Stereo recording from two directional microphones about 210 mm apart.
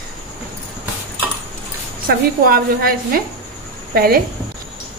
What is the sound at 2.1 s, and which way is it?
A woman's voice, 45° right (ahead or behind).